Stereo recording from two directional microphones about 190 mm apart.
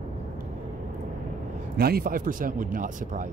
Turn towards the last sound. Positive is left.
turn(degrees=-45)  # may be behind; listen again after turning